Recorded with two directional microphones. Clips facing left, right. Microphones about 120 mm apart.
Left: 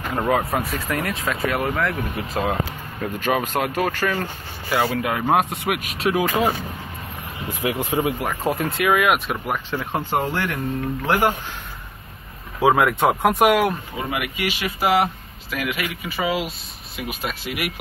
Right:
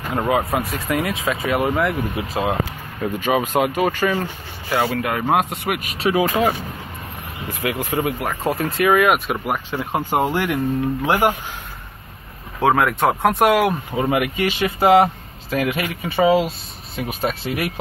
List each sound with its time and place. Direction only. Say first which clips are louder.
0.1 s speech: right 2 dB; 5° right (ahead or behind)
7.4 s speech: even; 10° left (ahead or behind)
8.5 s speech: right 3 dB; centre (ahead or behind)
12.5 s speech: even; 5° left (ahead or behind)
13.9 s speech: right 7 dB; 30° right (ahead or behind)